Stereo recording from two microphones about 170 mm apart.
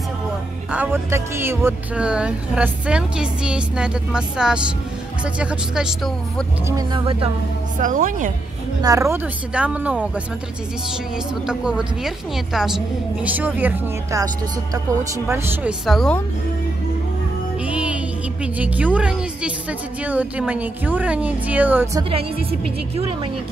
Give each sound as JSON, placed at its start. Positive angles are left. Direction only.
{"t": 0.7, "sound": "speech", "side_deg": -10}
{"t": 6.7, "sound": "speech", "side_deg": -30}
{"t": 7.8, "sound": "a woman's voice", "side_deg": -50}
{"t": 8.8, "sound": "speech", "side_deg": -20}
{"t": 9.5, "sound": "speech", "side_deg": -5}
{"t": 11.4, "sound": "speech", "side_deg": -5}
{"t": 15.2, "sound": "speech", "side_deg": -15}
{"t": 15.8, "sound": "speech", "side_deg": 0}
{"t": 17.6, "sound": "music", "side_deg": -5}
{"t": 18.4, "sound": "speech", "side_deg": -10}
{"t": 22.1, "sound": "a woman's voice", "side_deg": -35}